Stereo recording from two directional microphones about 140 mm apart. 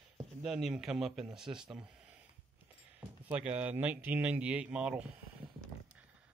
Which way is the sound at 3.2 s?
10° right (ahead or behind).